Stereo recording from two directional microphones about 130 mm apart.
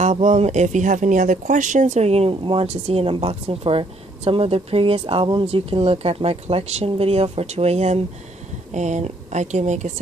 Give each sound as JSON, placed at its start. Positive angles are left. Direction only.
{"t": 0.0, "sound": "speech", "side_deg": -65}